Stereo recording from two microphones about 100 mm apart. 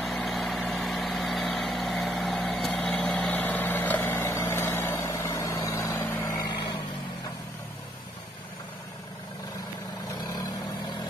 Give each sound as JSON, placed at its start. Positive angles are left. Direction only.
{"t": 0.0, "sound": "vehicle", "side_deg": 0}